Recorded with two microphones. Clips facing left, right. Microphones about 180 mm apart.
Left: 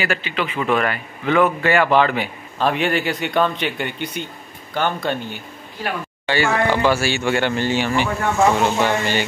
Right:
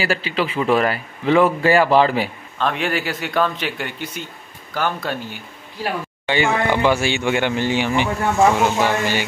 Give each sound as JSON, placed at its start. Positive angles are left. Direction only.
{"t": 0.0, "sound": "speech", "side_deg": -35}
{"t": 2.6, "sound": "a man's voice", "side_deg": 0}
{"t": 6.2, "sound": "speech", "side_deg": -20}